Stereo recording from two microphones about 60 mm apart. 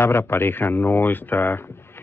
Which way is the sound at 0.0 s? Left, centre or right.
Left.